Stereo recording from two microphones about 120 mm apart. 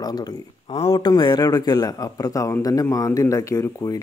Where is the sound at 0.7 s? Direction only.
60° left (ahead or behind).